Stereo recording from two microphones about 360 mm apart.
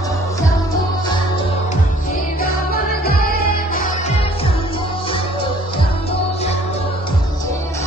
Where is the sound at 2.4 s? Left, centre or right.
Left.